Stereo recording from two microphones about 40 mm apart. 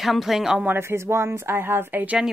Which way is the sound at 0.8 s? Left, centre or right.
Right.